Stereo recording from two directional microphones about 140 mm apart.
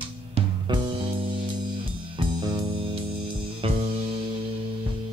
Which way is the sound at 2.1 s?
35° right (ahead or behind).